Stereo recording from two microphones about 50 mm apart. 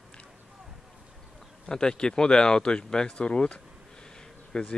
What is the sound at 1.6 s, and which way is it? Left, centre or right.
Speech, centre.